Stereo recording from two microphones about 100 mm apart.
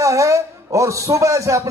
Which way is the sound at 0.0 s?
35° right (ahead or behind).